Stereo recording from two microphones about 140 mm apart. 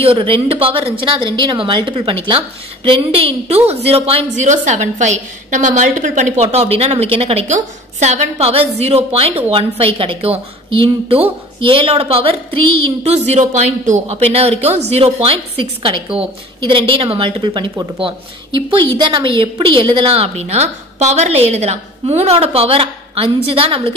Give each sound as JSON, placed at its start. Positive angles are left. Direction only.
{"t": 0.0, "sound": "a woman's voice", "side_deg": -40}
{"t": 4.5, "sound": "a woman's voice", "side_deg": -60}
{"t": 13.3, "sound": "speech", "side_deg": -60}
{"t": 14.3, "sound": "a woman's voice", "side_deg": -45}